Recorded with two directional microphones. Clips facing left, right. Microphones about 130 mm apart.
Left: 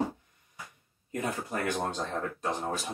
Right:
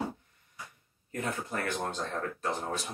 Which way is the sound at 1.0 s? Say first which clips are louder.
Left 2 dB; 20° left (ahead or behind).